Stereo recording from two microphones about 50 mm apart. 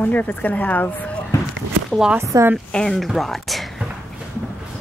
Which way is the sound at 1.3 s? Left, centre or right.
Left.